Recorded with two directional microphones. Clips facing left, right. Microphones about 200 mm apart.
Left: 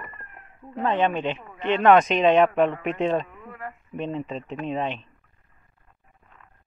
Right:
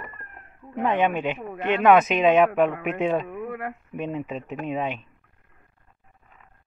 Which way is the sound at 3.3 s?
65° right (ahead or behind).